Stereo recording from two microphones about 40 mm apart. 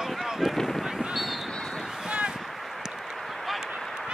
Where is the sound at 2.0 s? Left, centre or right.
Right.